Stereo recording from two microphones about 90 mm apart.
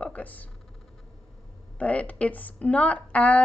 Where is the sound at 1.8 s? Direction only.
15° left (ahead or behind).